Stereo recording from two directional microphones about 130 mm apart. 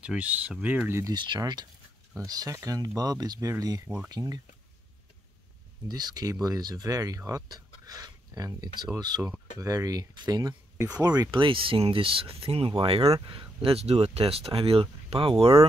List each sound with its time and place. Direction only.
0.0 s speech: 10° right (ahead or behind)
1.1 s speech: 35° right (ahead or behind)
5.9 s speech: 30° right (ahead or behind)